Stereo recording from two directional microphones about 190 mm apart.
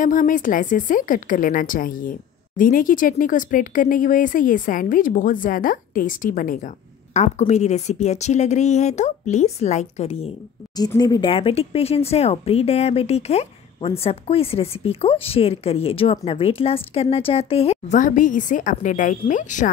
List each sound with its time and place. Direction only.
0.0 s a woman's voice: 45° left (ahead or behind)
10.8 s speech: 20° left (ahead or behind); by 19.7 s 40° left (ahead or behind)